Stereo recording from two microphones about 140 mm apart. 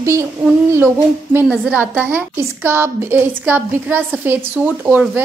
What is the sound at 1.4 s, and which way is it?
A woman's voice, 10° right (ahead or behind).